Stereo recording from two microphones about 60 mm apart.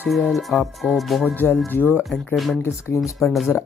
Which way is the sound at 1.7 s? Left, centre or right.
Left.